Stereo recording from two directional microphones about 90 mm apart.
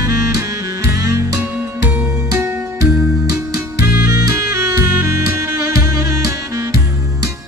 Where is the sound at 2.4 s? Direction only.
25° right (ahead or behind).